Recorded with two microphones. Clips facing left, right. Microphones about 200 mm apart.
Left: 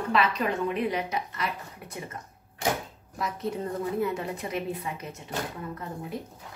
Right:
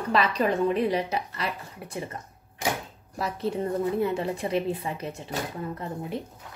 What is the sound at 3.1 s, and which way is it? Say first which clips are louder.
A woman's voice: right 3 dB; 30° right (ahead or behind).